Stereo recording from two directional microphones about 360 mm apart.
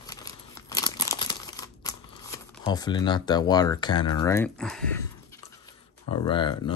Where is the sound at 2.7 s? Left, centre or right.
Centre.